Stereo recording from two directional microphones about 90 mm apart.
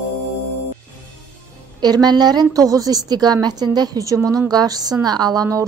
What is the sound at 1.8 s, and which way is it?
A woman's voice, 50° right (ahead or behind).